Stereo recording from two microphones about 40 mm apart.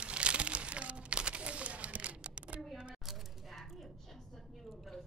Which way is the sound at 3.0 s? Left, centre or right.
Centre.